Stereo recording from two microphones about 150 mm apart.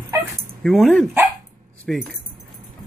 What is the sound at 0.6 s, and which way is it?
Speech, 5° left (ahead or behind).